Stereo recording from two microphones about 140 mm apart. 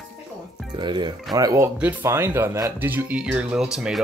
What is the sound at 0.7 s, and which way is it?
Speech, 35° right (ahead or behind).